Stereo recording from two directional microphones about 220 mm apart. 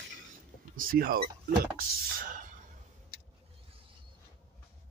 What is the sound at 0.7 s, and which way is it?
Speech, 40° right (ahead or behind).